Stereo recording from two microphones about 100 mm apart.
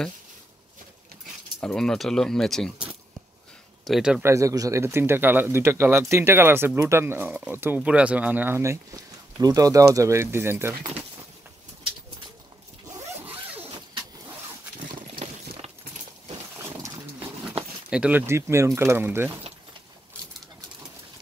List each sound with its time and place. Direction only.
1.6 s speech: 5° left (ahead or behind)
3.8 s speech: 5° right (ahead or behind)
4.2 s speech: 30° right (ahead or behind)
9.4 s speech: 35° right (ahead or behind)
13.2 s zipper: 15° right (ahead or behind)
16.5 s dog: 30° right (ahead or behind)
17.8 s speech: 15° right (ahead or behind)
18.2 s speech: 25° right (ahead or behind)